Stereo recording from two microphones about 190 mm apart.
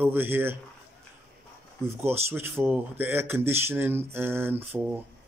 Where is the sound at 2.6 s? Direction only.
10° right (ahead or behind).